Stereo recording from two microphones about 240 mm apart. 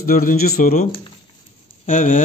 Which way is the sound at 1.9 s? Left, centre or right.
Left.